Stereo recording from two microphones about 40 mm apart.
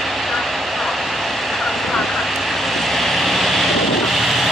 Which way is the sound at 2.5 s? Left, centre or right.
Centre.